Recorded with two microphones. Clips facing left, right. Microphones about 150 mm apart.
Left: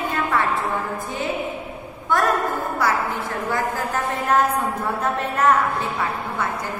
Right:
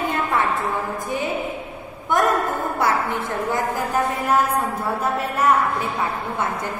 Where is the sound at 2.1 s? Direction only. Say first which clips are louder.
Right 1 dB; 20° right (ahead or behind).